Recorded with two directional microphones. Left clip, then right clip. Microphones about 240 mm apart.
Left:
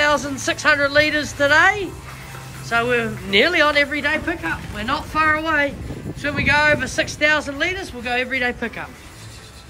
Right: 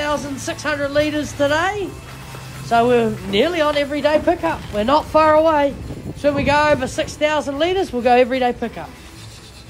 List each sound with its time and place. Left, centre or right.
0.0 s a man's voice: centre